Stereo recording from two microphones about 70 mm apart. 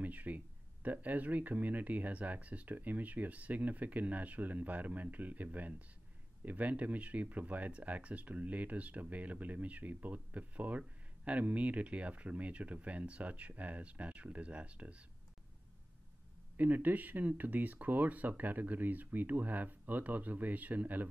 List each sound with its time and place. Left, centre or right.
0.0 s a sound: right
0.8 s speech: right
16.5 s speech: right